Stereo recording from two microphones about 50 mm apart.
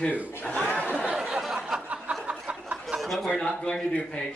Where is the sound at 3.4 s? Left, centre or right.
Centre.